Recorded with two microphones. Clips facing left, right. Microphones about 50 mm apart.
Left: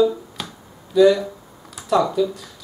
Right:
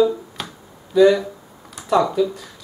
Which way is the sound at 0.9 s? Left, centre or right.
Centre.